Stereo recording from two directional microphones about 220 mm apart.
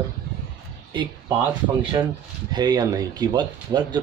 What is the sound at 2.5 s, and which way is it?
Speech, 20° right (ahead or behind).